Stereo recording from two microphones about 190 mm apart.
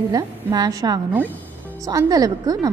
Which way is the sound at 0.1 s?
20° right (ahead or behind).